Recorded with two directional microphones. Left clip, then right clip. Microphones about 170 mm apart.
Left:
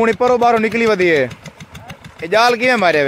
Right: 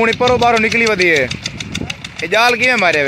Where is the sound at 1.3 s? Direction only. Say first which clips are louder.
Right 12 dB; 50° left (ahead or behind).